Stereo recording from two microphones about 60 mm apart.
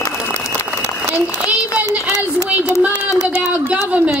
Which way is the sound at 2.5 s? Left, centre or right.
Right.